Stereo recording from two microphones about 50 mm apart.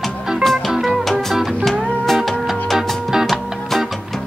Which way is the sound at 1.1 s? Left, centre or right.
Centre.